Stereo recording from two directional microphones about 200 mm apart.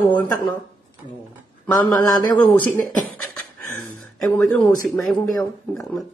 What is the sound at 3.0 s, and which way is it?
Beatboxing, 5° left (ahead or behind).